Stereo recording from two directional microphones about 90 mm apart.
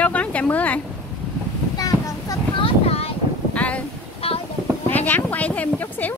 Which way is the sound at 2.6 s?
90° left.